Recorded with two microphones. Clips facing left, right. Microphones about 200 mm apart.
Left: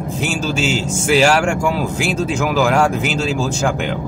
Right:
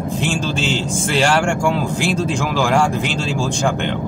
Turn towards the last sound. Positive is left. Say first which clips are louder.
# left 1 dB
turn(degrees=5)  # may be behind; listen again after turning